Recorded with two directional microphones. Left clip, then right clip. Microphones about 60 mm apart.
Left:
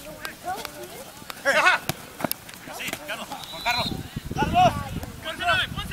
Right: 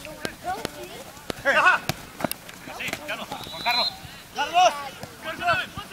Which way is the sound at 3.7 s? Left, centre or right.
Left.